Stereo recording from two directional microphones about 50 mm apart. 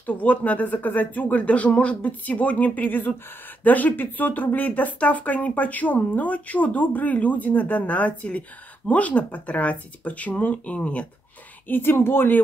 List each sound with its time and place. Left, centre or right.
0.0 s a woman's voice: left
11.6 s speech: left